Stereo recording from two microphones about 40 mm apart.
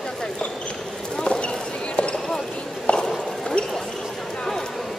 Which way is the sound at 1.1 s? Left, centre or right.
Left.